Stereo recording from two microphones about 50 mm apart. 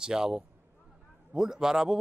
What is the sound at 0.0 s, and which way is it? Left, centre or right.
A man's voice, centre.